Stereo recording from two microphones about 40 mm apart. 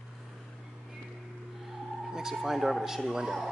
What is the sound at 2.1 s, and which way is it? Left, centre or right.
A man's voice, centre.